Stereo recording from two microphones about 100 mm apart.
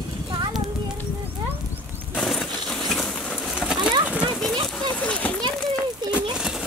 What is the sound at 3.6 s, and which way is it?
Bird, 5° right (ahead or behind).